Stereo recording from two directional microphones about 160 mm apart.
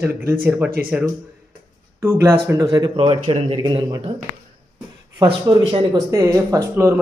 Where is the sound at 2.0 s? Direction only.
20° right (ahead or behind).